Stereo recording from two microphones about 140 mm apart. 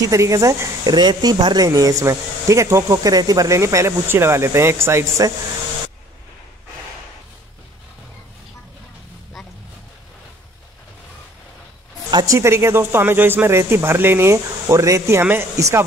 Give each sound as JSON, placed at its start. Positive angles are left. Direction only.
{"t": 0.0, "sound": "speech", "side_deg": -25}
{"t": 12.1, "sound": "speech", "side_deg": -30}
{"t": 12.4, "sound": "speech", "side_deg": -20}